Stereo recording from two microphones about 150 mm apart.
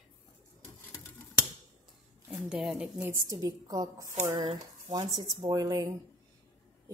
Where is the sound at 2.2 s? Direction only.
5° right (ahead or behind).